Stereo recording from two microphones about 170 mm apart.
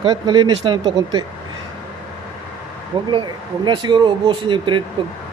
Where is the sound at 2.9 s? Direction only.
30° right (ahead or behind).